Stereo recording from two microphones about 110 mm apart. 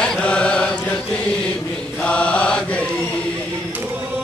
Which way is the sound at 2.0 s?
10° left (ahead or behind).